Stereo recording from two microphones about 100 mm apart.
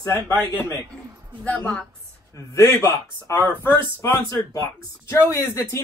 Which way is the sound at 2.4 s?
30° left (ahead or behind).